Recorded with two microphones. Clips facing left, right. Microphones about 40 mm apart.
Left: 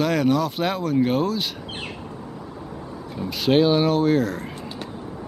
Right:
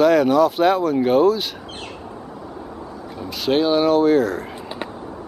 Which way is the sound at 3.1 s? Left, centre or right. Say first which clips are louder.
Left 1 dB; centre.